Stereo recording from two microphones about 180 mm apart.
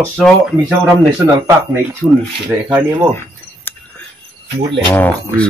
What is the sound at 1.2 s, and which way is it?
Speech, 15° right (ahead or behind).